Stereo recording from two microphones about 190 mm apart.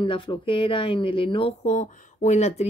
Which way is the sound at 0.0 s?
25° left (ahead or behind).